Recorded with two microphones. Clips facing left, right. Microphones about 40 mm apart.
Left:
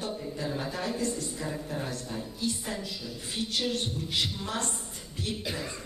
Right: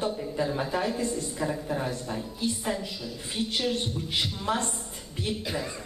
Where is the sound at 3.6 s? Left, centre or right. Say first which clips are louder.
Right 1 dB; centre.